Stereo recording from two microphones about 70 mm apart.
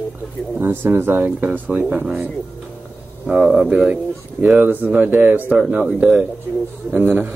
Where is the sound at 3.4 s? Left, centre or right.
Centre.